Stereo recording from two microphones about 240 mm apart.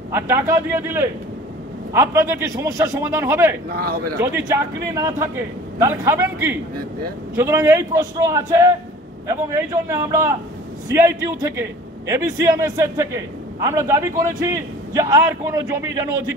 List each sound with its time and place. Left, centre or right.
0.1 s a man's voice: centre